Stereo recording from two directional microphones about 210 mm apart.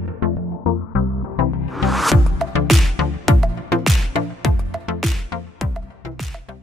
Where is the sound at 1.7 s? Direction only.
Centre (ahead or behind).